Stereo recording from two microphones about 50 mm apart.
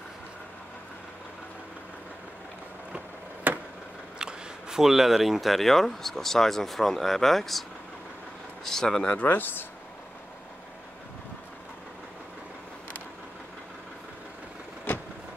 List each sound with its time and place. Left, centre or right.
3.5 s chop: right
4.2 s speech: centre
8.6 s speech: centre
9.2 s speech: left